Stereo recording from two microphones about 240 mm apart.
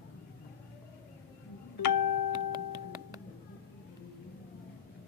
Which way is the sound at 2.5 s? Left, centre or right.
Centre.